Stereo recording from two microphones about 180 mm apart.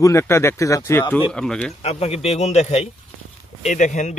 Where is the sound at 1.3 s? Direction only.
5° left (ahead or behind).